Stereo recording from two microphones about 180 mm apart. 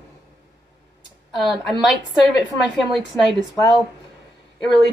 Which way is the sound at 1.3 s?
Centre (ahead or behind).